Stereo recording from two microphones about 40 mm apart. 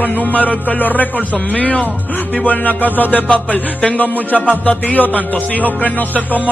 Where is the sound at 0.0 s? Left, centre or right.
Left.